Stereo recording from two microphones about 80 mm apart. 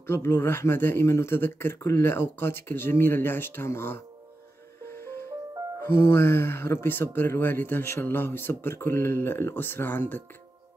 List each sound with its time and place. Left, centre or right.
0.0 s speech: left
4.8 s music: left
5.8 s speech: left